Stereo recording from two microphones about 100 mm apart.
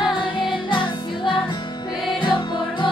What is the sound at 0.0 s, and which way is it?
Music, 55° left (ahead or behind).